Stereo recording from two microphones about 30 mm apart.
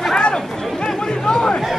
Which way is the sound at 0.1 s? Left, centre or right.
Left.